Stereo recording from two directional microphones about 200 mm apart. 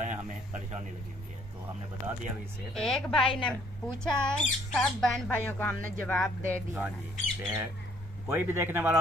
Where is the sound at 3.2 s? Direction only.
25° left (ahead or behind).